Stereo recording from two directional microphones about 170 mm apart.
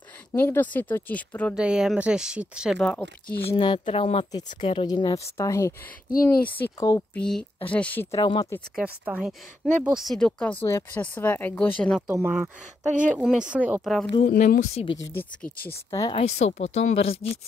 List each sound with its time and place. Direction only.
0.4 s speech: 10° left (ahead or behind)
1.5 s speech: 5° right (ahead or behind)
3.4 s speech: 30° left (ahead or behind)
7.2 s speech: 5° left (ahead or behind)
8.2 s speech: 30° left (ahead or behind)
8.7 s speech: 5° right (ahead or behind)
12.1 s speech: 10° right (ahead or behind)
12.8 s speech: 50° right (ahead or behind)
13.1 s speech: 5° right (ahead or behind)
14.2 s speech: 50° left (ahead or behind)
15.1 s speech: 10° left (ahead or behind)
15.9 s speech: 20° left (ahead or behind)
16.2 s speech: 40° left (ahead or behind)